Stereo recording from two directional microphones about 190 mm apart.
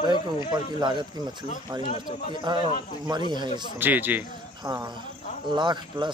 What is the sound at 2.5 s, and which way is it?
Speech, 25° right (ahead or behind).